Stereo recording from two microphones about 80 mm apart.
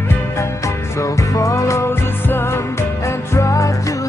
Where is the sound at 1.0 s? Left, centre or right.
Left.